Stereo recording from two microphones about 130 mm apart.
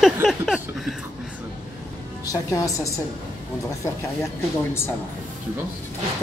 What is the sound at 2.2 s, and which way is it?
Speech, 25° left (ahead or behind).